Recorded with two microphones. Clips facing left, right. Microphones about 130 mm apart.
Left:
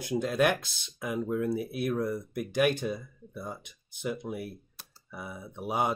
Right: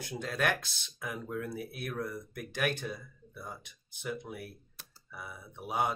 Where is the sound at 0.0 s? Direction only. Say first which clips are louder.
Left 7 dB; 15° left (ahead or behind).